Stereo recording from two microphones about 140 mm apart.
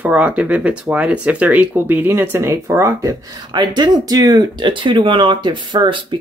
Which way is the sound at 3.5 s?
30° right (ahead or behind).